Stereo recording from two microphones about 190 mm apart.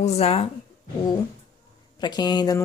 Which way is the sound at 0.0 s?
30° left (ahead or behind).